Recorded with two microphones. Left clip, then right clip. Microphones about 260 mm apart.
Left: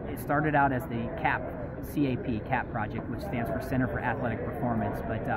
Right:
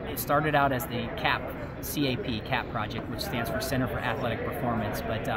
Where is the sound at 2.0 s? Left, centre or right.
Centre.